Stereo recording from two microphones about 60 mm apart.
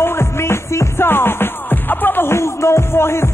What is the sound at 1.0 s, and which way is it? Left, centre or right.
Music, left.